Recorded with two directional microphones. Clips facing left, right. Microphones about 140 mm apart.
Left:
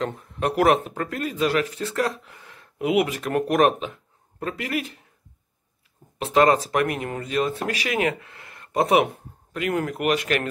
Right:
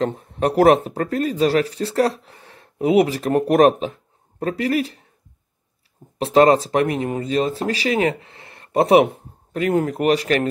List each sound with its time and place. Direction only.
0.0 s speech: 35° right (ahead or behind)
6.1 s speech: 30° right (ahead or behind)